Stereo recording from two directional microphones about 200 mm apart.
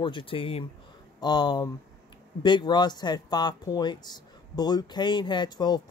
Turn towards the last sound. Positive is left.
turn(degrees=20)  # may be behind; listen again after turning